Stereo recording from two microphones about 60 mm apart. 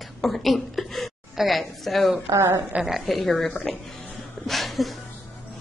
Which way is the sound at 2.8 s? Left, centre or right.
Centre.